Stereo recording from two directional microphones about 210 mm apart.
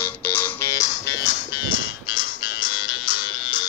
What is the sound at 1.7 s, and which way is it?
Music, 65° left (ahead or behind).